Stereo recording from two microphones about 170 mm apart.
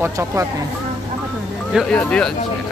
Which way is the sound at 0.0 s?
15° right (ahead or behind).